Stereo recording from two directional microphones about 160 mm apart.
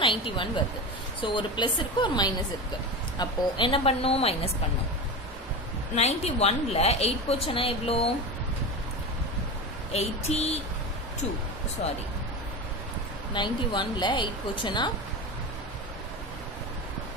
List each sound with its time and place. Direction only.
0.0 s a woman's voice: 30° left (ahead or behind)
5.9 s a woman's voice: 40° left (ahead or behind)
9.9 s a woman's voice: 40° left (ahead or behind)
13.3 s a woman's voice: 30° left (ahead or behind)